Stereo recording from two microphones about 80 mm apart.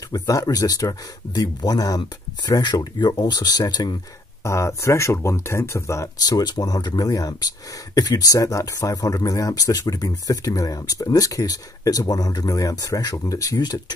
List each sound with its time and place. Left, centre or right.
0.1 s speech: left
4.5 s speech: left
6.1 s speech: left
13.6 s speech: left